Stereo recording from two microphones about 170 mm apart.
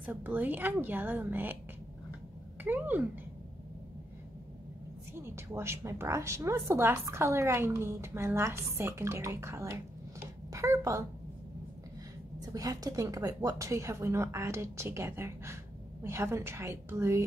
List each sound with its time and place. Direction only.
0.0 s a woman's voice: 10° right (ahead or behind)
2.6 s a woman's voice: 10° right (ahead or behind)
5.1 s a woman's voice: 15° right (ahead or behind)
12.4 s a woman's voice: 20° right (ahead or behind)